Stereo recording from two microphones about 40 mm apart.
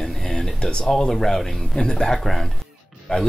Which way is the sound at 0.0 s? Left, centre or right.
Centre.